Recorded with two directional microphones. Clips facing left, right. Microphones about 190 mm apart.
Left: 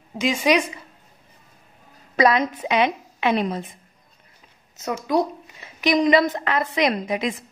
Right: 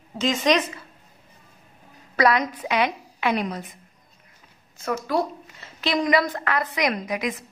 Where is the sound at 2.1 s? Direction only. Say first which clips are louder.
Left 2 dB; 20° left (ahead or behind).